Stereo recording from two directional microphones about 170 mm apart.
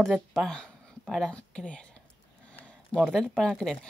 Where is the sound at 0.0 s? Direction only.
Centre (ahead or behind).